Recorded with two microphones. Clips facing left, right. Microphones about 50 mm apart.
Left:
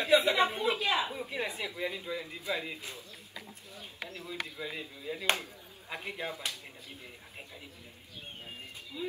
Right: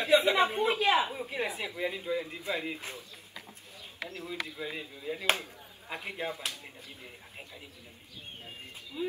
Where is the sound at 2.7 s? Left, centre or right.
Right.